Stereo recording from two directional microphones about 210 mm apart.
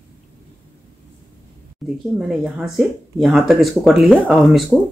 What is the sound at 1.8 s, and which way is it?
Speech, centre (ahead or behind).